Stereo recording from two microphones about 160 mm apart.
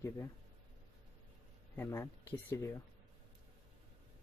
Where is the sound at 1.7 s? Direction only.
15° left (ahead or behind).